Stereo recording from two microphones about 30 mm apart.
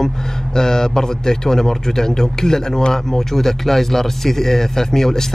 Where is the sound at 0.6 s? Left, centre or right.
Centre.